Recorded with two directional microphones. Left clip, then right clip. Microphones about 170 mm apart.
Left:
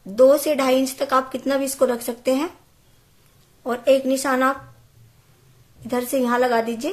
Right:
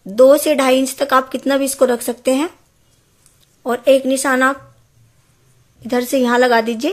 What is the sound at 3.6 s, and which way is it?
Speech, 30° right (ahead or behind).